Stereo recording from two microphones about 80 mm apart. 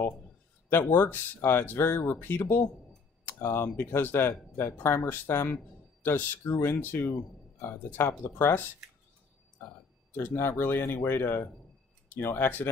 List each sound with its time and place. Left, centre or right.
0.7 s speech: left
10.1 s speech: left